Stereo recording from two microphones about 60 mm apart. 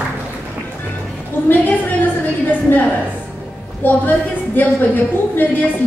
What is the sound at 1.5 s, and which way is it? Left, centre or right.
Speech, left.